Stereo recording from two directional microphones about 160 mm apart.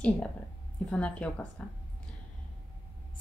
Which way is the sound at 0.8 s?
5° left (ahead or behind).